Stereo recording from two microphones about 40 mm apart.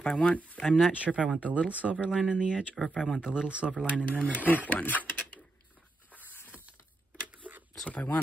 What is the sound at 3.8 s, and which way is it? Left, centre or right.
Speech, left.